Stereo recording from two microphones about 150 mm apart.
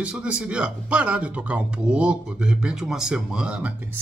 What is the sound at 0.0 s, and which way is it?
Speech, 5° right (ahead or behind).